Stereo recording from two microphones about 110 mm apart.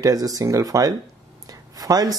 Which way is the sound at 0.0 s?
35° right (ahead or behind).